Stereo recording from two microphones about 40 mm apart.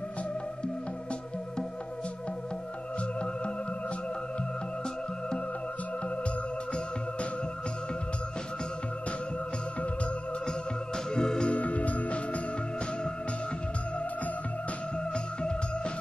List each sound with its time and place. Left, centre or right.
11.1 s music: centre
11.5 s music: left